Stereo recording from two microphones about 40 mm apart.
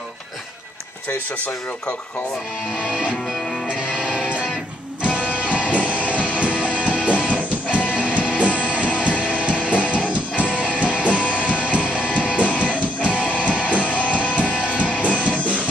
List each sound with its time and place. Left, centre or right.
1.3 s speech: left
2.7 s music: centre
3.3 s music: centre
3.6 s music: right
13.8 s music: left
14.1 s music: right